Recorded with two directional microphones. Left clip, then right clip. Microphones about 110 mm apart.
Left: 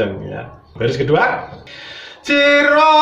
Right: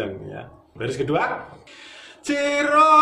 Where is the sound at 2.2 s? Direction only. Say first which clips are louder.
Left 10 dB; 20° right (ahead or behind).